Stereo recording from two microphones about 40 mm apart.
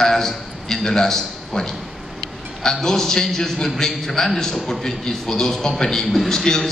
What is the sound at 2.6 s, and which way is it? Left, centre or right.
A man's voice, centre.